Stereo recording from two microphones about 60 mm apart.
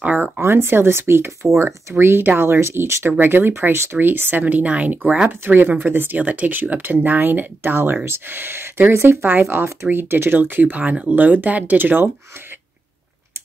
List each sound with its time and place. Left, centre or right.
0.0 s speech: right
0.4 s speech: right
5.5 s speech: right